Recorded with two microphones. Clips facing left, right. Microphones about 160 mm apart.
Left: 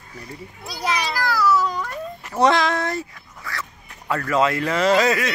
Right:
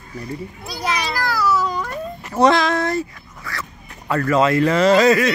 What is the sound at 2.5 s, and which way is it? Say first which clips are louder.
Speech: right 3 dB; 15° left (ahead or behind).